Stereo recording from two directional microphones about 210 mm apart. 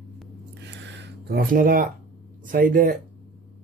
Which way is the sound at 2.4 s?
40° right (ahead or behind).